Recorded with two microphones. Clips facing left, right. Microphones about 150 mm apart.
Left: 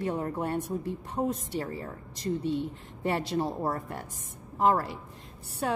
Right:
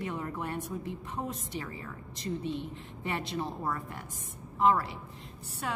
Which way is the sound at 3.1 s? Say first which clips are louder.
Left 6 dB; 40° left (ahead or behind).